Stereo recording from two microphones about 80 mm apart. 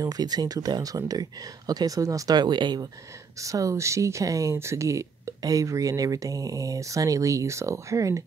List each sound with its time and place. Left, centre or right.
0.0 s speech: right
3.3 s speech: right